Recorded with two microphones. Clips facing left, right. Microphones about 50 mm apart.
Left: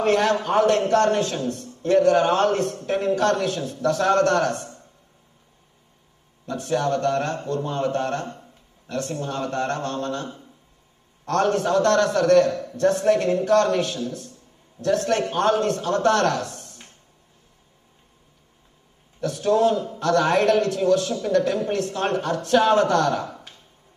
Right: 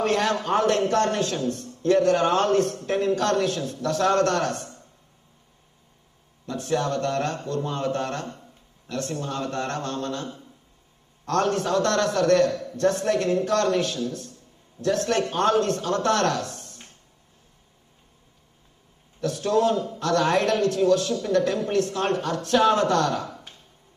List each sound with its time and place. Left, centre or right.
0.0 s a man's voice: left
6.4 s a man's voice: left
19.2 s speech: left